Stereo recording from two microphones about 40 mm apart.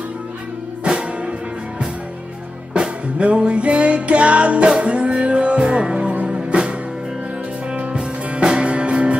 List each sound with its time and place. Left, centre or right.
0.8 s music: right
2.7 s music: right
7.7 s music: right